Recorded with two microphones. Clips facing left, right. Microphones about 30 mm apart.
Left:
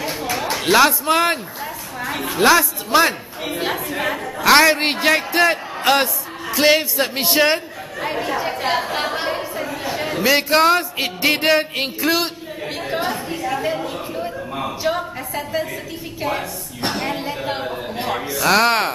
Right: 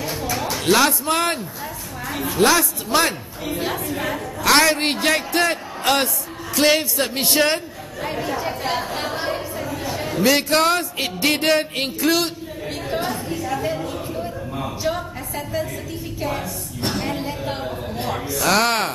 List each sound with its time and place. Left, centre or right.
0.1 s a sound: centre
2.0 s a woman's voice: centre
6.5 s chatter: centre
10.3 s a sound: centre
17.5 s a man's voice: left
18.3 s a woman's voice: centre